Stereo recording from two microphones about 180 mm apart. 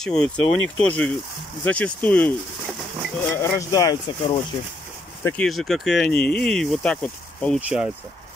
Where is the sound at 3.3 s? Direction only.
15° left (ahead or behind).